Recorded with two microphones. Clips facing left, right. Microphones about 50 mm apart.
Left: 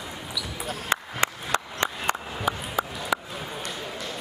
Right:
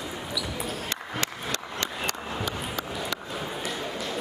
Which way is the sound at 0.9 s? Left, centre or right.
Left.